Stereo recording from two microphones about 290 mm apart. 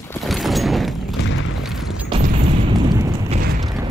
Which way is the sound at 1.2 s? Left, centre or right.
Left.